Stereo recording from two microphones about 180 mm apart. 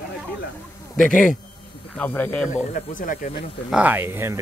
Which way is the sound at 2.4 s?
45° left (ahead or behind).